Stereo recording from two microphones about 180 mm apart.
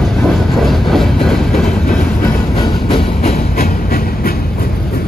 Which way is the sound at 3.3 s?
55° left (ahead or behind).